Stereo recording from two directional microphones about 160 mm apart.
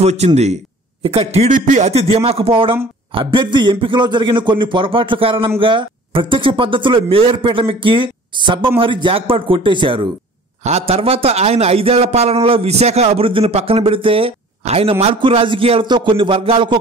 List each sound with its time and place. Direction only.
0.0 s a man's voice: 45° right (ahead or behind)